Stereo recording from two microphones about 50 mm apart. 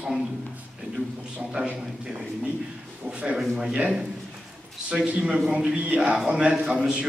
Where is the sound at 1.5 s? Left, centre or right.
Centre.